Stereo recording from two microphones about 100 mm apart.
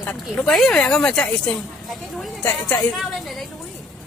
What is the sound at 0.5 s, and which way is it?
Speech, 5° left (ahead or behind).